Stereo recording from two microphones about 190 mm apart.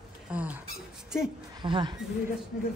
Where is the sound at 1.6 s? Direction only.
25° right (ahead or behind).